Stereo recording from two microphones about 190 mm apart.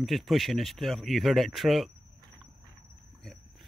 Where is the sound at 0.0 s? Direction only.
Centre (ahead or behind).